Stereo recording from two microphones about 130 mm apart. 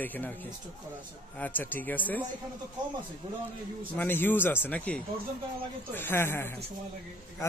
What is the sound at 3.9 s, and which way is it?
A man's voice, 15° left (ahead or behind).